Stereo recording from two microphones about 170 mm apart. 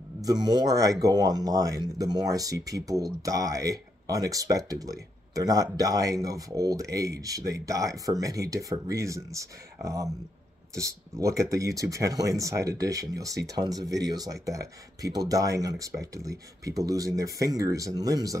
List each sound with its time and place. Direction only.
0.2 s speech: 25° right (ahead or behind)